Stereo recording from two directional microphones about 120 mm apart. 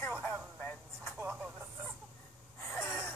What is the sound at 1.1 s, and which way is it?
Vehicle, 10° right (ahead or behind).